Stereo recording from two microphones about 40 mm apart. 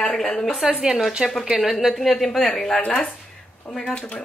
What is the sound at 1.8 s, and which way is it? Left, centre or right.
Speech, centre.